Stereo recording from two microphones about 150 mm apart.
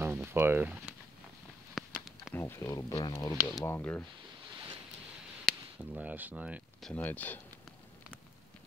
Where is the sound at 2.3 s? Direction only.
15° left (ahead or behind).